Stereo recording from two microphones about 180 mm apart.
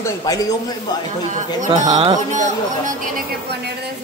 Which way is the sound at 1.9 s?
25° right (ahead or behind).